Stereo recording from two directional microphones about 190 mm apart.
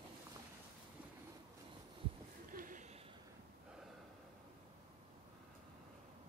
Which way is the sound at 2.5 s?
45° right (ahead or behind).